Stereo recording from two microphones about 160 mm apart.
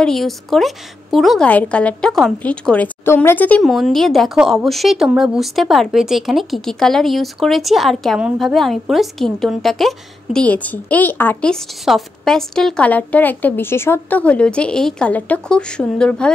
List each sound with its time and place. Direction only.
0.0 s a woman's voice: centre (ahead or behind)